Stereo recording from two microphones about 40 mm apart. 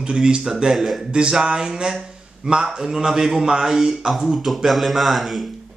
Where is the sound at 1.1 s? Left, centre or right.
Right.